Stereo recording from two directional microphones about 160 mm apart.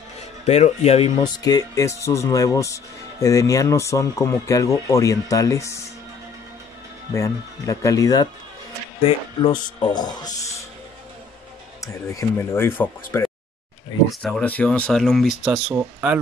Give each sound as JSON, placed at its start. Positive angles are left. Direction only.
{"t": 0.5, "sound": "speech", "side_deg": 45}
{"t": 1.2, "sound": "speech", "side_deg": 25}
{"t": 7.2, "sound": "speech", "side_deg": 20}
{"t": 11.8, "sound": "speech", "side_deg": 20}